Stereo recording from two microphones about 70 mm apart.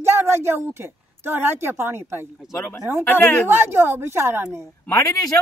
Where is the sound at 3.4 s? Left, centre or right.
Right.